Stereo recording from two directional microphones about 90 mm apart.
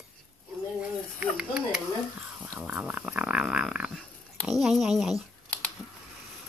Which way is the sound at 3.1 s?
10° right (ahead or behind).